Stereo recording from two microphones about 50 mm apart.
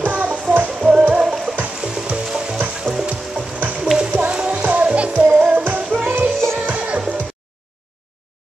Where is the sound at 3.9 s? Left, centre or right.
Right.